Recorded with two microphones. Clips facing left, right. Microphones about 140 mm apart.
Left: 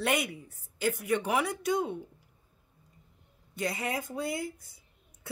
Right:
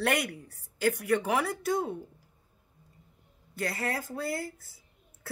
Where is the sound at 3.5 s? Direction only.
15° left (ahead or behind).